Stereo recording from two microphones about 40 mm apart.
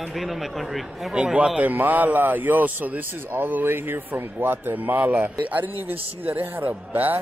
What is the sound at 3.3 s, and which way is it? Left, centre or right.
Speech, right.